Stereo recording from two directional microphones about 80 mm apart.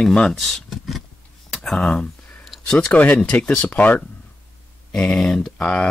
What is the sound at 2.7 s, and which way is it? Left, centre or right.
Speech, centre.